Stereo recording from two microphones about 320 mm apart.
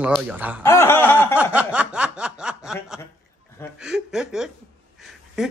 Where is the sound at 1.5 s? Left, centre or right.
Centre.